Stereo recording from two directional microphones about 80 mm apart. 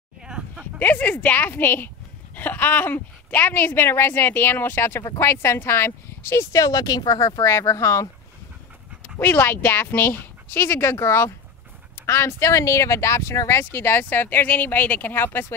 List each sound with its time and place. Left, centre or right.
0.2 s a sound: centre
0.7 s speech: left
6.6 s speech: left
7.4 s speech: left
9.2 s speech: left